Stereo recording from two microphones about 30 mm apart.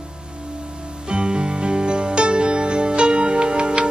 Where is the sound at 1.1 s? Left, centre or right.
Right.